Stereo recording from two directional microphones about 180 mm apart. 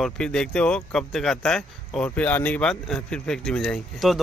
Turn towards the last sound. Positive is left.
turn(degrees=0)  # may be behind; listen again after turning